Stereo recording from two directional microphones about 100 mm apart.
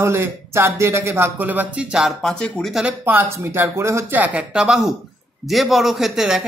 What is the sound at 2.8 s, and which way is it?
A man's voice, 20° right (ahead or behind).